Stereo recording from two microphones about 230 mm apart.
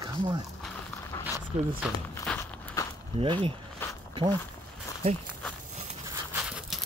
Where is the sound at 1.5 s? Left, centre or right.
Right.